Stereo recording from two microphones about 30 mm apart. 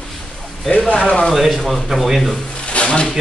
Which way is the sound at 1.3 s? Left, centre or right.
Centre.